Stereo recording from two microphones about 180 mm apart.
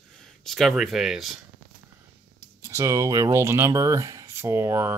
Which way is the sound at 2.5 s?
15° right (ahead or behind).